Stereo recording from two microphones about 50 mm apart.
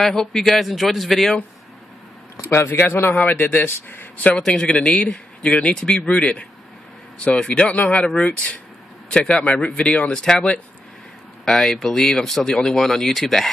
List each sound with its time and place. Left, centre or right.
0.0 s a man's voice: centre
2.5 s a man's voice: left
4.4 s a man's voice: centre
7.4 s a man's voice: left
11.4 s speech: centre